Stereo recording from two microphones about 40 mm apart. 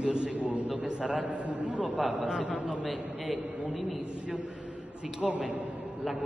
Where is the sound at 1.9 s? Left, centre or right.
Centre.